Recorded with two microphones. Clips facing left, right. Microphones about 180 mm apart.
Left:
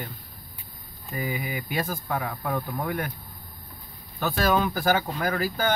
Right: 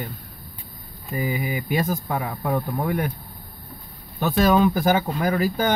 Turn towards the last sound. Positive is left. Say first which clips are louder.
# right 4 dB
turn(degrees=-20)  # may be behind; listen again after turning